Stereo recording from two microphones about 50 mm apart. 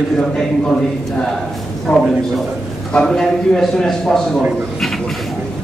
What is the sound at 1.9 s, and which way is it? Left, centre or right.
A man's voice, centre.